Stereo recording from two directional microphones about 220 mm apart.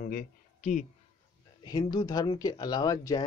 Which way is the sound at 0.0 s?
40° left (ahead or behind).